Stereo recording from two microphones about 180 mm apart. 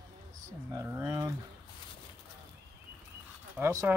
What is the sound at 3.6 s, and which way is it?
Speech, 15° right (ahead or behind).